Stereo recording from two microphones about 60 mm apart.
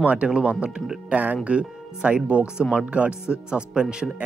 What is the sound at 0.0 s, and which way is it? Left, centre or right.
Speech, right.